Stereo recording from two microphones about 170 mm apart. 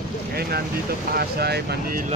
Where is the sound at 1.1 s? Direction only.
65° right (ahead or behind).